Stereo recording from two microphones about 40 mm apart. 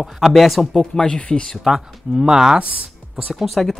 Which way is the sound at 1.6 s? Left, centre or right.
Centre.